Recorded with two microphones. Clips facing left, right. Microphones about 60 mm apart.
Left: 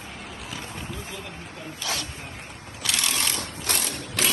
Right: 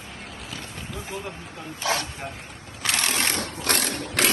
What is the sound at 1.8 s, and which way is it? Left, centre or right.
Speech, right.